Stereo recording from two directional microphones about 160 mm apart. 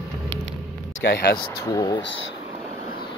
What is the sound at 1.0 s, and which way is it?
Speech, 90° left.